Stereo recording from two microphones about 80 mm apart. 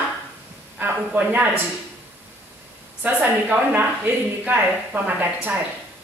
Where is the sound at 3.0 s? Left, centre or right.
Right.